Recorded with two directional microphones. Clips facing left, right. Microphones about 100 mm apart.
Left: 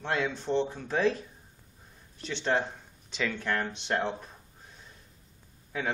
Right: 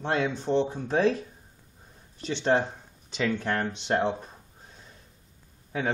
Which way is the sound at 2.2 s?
25° right (ahead or behind).